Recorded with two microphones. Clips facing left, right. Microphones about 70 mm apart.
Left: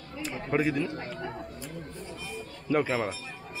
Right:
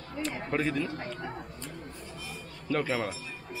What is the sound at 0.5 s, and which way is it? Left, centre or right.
Speech, centre.